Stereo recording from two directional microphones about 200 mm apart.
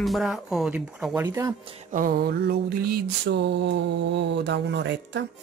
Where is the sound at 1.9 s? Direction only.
45° right (ahead or behind).